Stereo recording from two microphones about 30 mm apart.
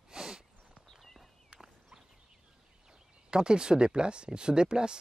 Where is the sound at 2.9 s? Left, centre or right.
Right.